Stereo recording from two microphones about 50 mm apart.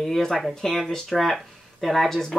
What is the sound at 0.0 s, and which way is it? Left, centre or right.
Speech, centre.